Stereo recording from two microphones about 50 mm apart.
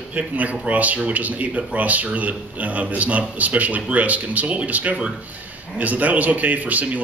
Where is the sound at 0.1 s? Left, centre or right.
Right.